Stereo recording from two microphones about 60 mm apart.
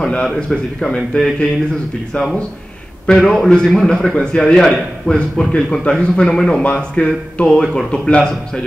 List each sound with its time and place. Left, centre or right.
0.0 s a man's voice: centre
3.1 s a man's voice: centre
6.6 s a man's voice: left